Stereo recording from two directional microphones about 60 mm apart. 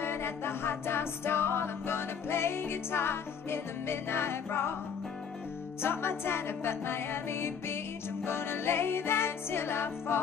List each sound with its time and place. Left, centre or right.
0.0 s music: left
5.8 s music: left